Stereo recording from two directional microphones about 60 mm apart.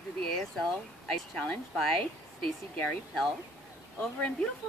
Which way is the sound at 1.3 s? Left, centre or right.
Left.